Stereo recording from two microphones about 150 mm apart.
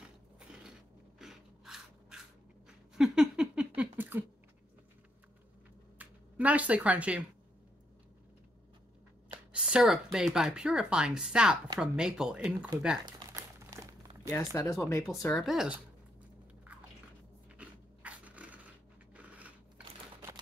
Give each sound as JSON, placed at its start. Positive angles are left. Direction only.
{"t": 1.2, "sound": "a sound", "side_deg": -5}
{"t": 5.9, "sound": "a sound", "side_deg": -10}
{"t": 9.5, "sound": "speech", "side_deg": -5}
{"t": 13.0, "sound": "crumpling", "side_deg": -25}
{"t": 14.3, "sound": "speech", "side_deg": 20}
{"t": 15.0, "sound": "speech", "side_deg": 5}
{"t": 17.6, "sound": "dog", "side_deg": -10}
{"t": 19.1, "sound": "scissors", "side_deg": -10}